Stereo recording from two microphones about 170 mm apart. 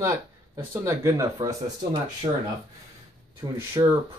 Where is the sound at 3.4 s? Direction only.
20° right (ahead or behind).